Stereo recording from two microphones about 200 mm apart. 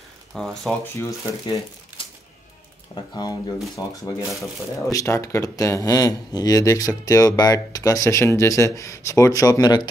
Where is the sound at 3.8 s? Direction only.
20° left (ahead or behind).